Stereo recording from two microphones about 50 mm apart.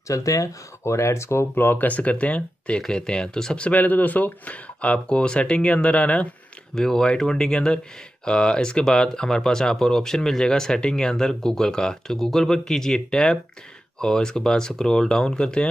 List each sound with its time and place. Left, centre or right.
0.1 s speech: left
1.5 s speech: left; by 3.6 s centre
3.6 s speech: left
6.7 s speech: centre